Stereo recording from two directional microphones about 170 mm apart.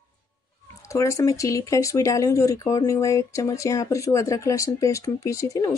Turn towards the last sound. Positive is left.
turn(degrees=20)  # may be behind; listen again after turning